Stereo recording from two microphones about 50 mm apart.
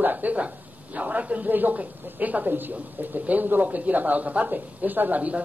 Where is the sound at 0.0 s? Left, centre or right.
Right.